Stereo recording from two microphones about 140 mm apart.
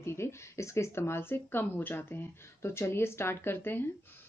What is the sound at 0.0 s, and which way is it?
Speech, 20° left (ahead or behind).